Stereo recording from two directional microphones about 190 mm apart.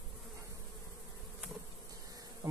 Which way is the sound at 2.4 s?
15° right (ahead or behind).